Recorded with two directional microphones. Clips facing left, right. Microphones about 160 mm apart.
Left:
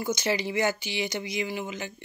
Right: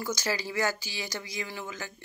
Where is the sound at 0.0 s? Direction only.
20° left (ahead or behind).